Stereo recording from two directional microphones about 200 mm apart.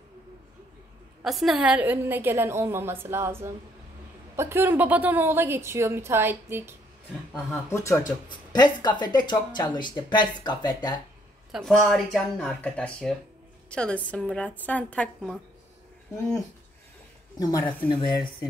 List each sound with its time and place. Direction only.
1.2 s a woman's voice: centre (ahead or behind)
7.7 s speech: 15° left (ahead or behind)
11.5 s a woman's voice: centre (ahead or behind)
17.4 s speech: 20° left (ahead or behind)